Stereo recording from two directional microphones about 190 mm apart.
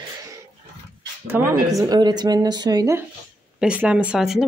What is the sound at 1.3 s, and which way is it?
A woman's voice, 10° right (ahead or behind).